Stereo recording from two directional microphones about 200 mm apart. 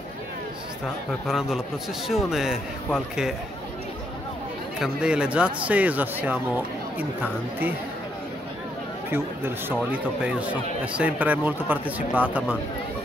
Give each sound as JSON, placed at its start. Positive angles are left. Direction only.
{"t": 1.2, "sound": "speech", "side_deg": 0}
{"t": 4.7, "sound": "speech", "side_deg": -5}
{"t": 9.1, "sound": "speech", "side_deg": -10}